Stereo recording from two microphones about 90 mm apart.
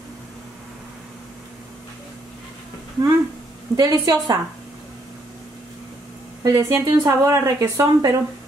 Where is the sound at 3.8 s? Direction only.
35° right (ahead or behind).